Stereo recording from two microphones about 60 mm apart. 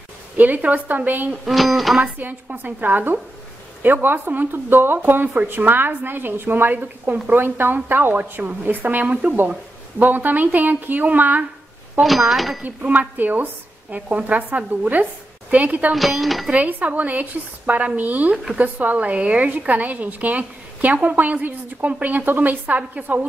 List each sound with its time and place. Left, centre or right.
0.4 s a woman's voice: right
1.5 s speech: centre
2.1 s a woman's voice: right
12.0 s speech: centre
12.6 s a woman's voice: right
15.9 s speech: centre
16.4 s a woman's voice: right
18.3 s speech: centre
18.6 s a woman's voice: right